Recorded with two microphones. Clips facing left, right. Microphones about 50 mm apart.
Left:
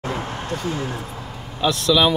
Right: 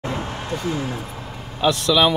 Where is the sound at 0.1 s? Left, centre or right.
Left.